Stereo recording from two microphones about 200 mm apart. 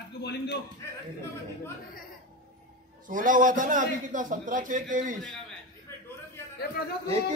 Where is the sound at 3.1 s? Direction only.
40° right (ahead or behind).